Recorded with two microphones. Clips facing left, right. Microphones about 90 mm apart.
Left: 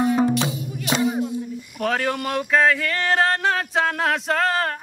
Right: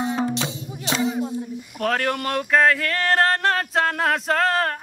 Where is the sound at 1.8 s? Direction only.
Centre (ahead or behind).